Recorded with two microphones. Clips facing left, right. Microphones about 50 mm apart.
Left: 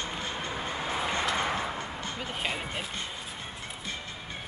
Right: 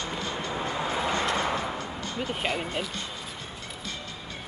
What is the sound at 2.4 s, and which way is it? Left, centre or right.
Speech, centre.